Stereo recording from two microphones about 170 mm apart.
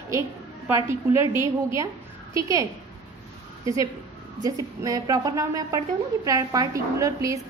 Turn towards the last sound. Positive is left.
turn(degrees=-20)  # may be behind; listen again after turning